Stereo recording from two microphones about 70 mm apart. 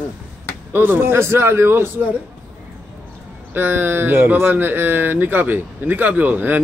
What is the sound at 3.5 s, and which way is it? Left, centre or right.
Speech, right.